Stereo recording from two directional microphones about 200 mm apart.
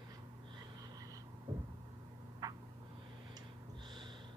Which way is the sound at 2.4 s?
20° right (ahead or behind).